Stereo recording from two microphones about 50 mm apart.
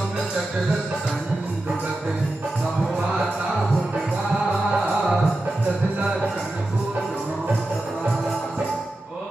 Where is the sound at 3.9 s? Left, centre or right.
Centre.